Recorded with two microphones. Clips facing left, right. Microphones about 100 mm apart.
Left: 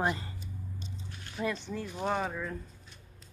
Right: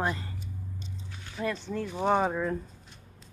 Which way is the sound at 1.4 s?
5° left (ahead or behind).